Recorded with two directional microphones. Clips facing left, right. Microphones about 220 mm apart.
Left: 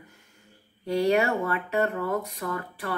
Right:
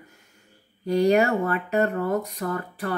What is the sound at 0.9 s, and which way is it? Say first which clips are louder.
Speech: right 3 dB; 40° right (ahead or behind).